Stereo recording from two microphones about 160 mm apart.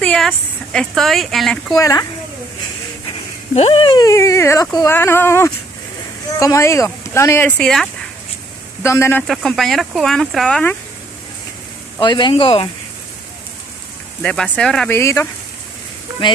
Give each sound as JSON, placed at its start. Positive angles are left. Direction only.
{"t": 0.0, "sound": "a sound", "side_deg": 5}
{"t": 0.3, "sound": "speech", "side_deg": 0}
{"t": 1.8, "sound": "speech", "side_deg": 20}
{"t": 3.5, "sound": "speech", "side_deg": 35}
{"t": 8.8, "sound": "speech", "side_deg": 15}
{"t": 9.3, "sound": "speech", "side_deg": 0}
{"t": 12.0, "sound": "speech", "side_deg": 30}
{"t": 14.2, "sound": "speech", "side_deg": 5}
{"t": 15.0, "sound": "speech", "side_deg": 15}
{"t": 16.2, "sound": "speech", "side_deg": 30}